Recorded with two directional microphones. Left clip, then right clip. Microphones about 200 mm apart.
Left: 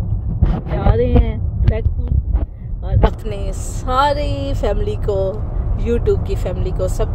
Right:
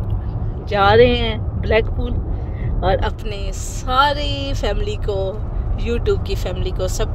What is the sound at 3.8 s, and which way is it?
Speech, 15° left (ahead or behind).